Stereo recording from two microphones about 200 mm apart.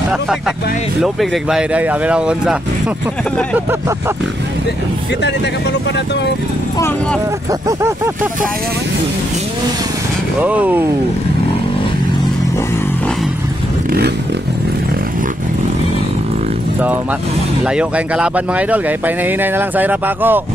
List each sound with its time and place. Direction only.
1.0 s speech: centre (ahead or behind)
10.4 s speech: 10° right (ahead or behind)
17.6 s speech: 5° right (ahead or behind)